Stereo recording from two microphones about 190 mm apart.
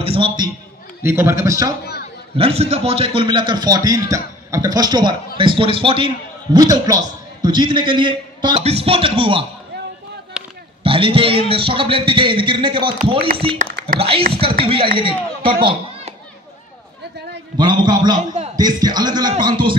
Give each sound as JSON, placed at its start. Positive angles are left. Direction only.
{"t": 0.0, "sound": "a sound", "side_deg": -30}
{"t": 1.0, "sound": "a man's voice", "side_deg": -15}
{"t": 2.3, "sound": "a man's voice", "side_deg": -30}
{"t": 10.4, "sound": "a sound", "side_deg": -5}
{"t": 10.8, "sound": "a man's voice", "side_deg": -30}
{"t": 13.9, "sound": "a man's voice", "side_deg": -30}
{"t": 17.6, "sound": "a man's voice", "side_deg": -25}